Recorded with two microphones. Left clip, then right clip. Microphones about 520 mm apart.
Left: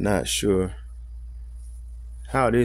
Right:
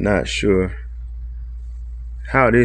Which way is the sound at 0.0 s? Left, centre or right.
Left.